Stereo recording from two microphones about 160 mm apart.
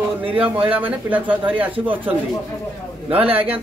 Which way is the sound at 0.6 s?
10° right (ahead or behind).